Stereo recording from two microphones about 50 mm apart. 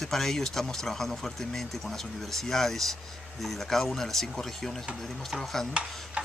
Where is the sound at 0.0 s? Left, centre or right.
Centre.